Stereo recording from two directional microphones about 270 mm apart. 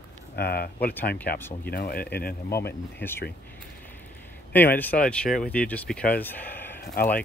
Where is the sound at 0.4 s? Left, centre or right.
Left.